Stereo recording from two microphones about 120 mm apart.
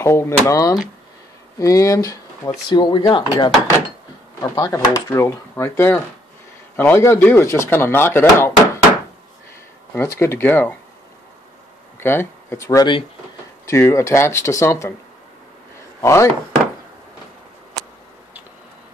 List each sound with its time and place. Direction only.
0.0 s speech: 25° left (ahead or behind)
2.7 s speech: 40° left (ahead or behind)
5.1 s speech: 20° left (ahead or behind)
9.9 s speech: 20° left (ahead or behind)
12.0 s speech: 20° left (ahead or behind)
16.0 s speech: 25° left (ahead or behind)